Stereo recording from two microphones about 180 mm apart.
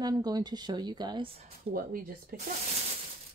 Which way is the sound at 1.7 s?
55° right (ahead or behind).